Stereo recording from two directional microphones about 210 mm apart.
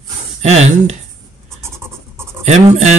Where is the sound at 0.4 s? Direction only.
30° right (ahead or behind).